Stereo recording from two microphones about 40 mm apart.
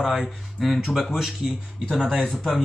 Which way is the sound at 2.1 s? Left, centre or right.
Centre.